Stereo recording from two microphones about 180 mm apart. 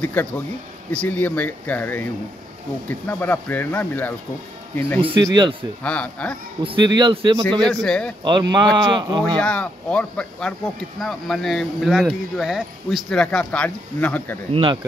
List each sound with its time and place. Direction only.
0.0 s speech: 10° left (ahead or behind)
3.1 s speech: 10° left (ahead or behind)
5.0 s speech: 25° right (ahead or behind)
5.9 s speech: 5° left (ahead or behind)
6.6 s speech: 25° right (ahead or behind)
7.6 s speech: 5° left (ahead or behind)
8.2 s speech: 25° right (ahead or behind)
9.4 s speech: 5° left (ahead or behind)
14.5 s speech: 25° right (ahead or behind)